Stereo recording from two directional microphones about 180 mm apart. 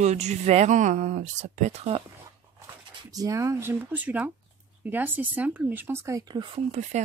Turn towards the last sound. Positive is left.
turn(degrees=-40)  # may be behind; listen again after turning